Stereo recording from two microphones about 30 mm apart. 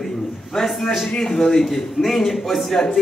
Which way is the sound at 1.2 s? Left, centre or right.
Centre.